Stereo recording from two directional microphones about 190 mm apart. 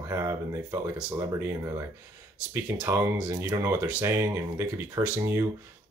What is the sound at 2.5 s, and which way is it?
Speech, 10° right (ahead or behind).